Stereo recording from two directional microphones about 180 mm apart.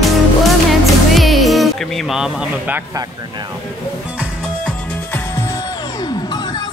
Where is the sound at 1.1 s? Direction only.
Centre (ahead or behind).